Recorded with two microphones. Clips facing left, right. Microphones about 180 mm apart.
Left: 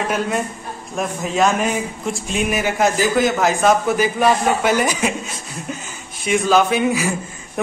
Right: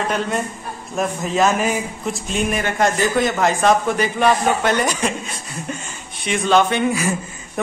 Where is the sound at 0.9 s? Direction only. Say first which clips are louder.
Right 1 dB; centre (ahead or behind).